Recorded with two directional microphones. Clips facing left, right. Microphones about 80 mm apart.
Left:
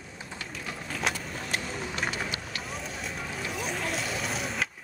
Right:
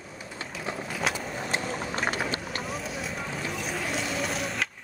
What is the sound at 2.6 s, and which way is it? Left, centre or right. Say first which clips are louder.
Vehicle: right 3 dB; centre.